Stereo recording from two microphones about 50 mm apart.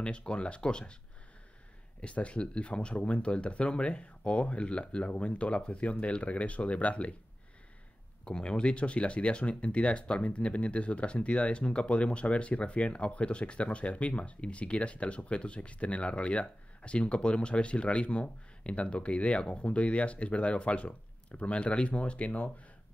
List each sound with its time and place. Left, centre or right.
0.0 s speech: centre
2.0 s speech: left
8.3 s speech: centre